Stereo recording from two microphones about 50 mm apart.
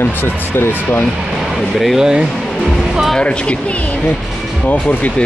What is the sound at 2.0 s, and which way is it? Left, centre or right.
Speech, centre.